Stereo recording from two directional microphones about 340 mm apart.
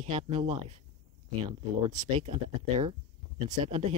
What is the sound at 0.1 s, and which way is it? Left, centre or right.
Speech, centre.